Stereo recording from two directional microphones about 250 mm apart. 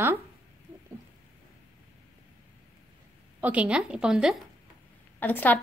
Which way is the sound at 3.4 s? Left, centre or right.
Centre.